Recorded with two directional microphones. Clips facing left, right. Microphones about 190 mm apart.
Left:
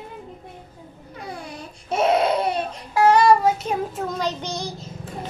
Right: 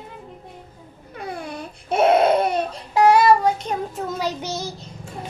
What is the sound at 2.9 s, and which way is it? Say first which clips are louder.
Child singing: right 1 dB; 20° right (ahead or behind).